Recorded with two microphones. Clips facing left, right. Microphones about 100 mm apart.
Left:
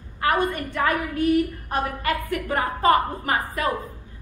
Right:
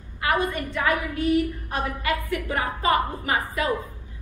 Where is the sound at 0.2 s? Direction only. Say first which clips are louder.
Left 2 dB; 45° left (ahead or behind).